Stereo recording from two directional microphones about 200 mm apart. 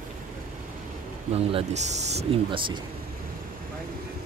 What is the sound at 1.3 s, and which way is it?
Speech, 30° right (ahead or behind).